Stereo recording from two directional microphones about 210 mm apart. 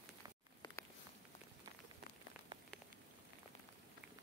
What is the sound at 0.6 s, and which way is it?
Patter, 20° left (ahead or behind).